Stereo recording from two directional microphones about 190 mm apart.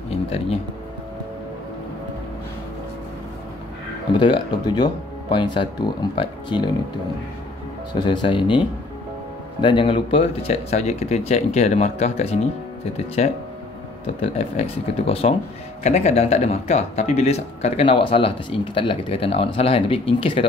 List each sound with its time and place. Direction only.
0.1 s a sound: 30° left (ahead or behind)
4.2 s speech: 25° left (ahead or behind)
7.9 s speech: 25° left (ahead or behind)